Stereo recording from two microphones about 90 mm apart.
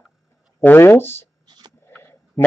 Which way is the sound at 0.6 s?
25° left (ahead or behind).